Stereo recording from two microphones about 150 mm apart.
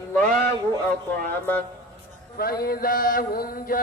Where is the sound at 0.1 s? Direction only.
5° left (ahead or behind).